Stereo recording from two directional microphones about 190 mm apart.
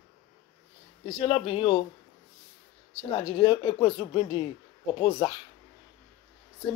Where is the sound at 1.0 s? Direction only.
30° left (ahead or behind).